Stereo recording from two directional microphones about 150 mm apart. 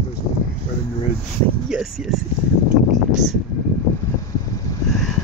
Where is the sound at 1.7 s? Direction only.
5° right (ahead or behind).